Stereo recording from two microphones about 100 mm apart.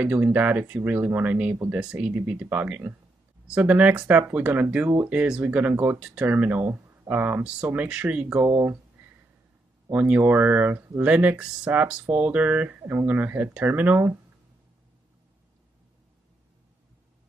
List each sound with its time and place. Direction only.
0.0 s speech: 15° right (ahead or behind)
9.8 s speech: 15° right (ahead or behind)